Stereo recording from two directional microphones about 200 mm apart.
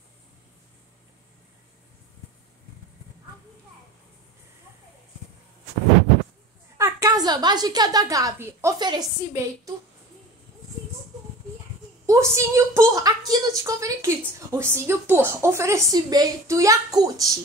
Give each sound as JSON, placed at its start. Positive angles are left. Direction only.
{"t": 6.8, "sound": "a woman's voice", "side_deg": -20}
{"t": 12.1, "sound": "a woman's voice", "side_deg": -15}